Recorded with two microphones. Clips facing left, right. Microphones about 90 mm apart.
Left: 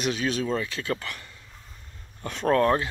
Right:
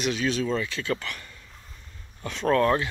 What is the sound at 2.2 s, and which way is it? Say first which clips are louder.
Speech: even; 40° left (ahead or behind).